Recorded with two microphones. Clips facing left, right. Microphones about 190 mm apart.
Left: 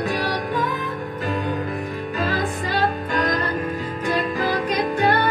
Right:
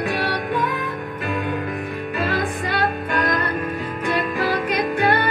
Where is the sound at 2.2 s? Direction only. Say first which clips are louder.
Right 1 dB; 60° right (ahead or behind).